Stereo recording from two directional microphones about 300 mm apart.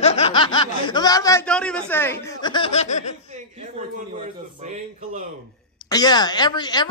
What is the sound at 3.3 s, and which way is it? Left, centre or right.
Speech, right.